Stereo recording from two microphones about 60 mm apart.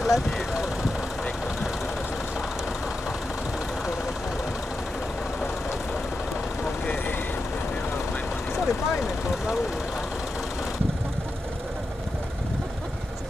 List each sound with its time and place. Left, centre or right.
0.0 s vehicle: centre
6.6 s vehicle: left
8.5 s vehicle: centre